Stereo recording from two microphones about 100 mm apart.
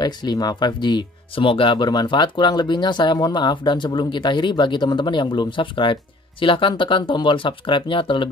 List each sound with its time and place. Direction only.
0.0 s speech: 45° left (ahead or behind)